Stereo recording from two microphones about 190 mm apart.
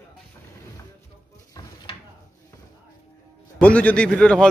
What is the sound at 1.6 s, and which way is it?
Drawer open or close, 20° left (ahead or behind).